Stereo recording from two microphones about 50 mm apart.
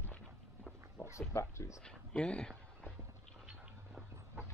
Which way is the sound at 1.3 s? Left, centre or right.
Left.